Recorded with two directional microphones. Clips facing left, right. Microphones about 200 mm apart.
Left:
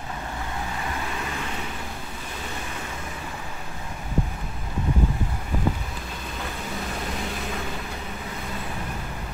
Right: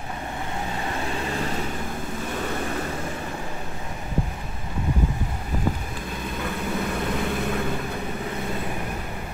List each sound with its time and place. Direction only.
7.2 s vehicle: 55° right (ahead or behind)